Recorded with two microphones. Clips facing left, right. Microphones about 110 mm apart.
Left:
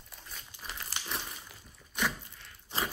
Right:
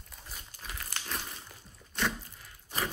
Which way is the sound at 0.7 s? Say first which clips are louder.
Even; 35° left (ahead or behind).